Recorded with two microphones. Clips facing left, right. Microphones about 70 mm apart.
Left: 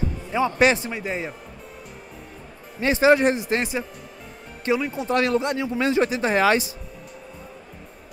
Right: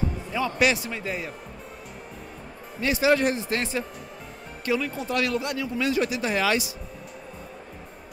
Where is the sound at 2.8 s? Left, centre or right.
Left.